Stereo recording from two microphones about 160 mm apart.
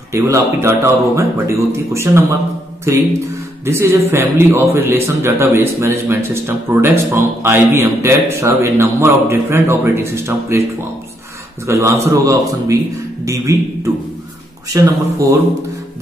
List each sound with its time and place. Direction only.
0.1 s a man's voice: 15° right (ahead or behind)
14.7 s a man's voice: 20° right (ahead or behind)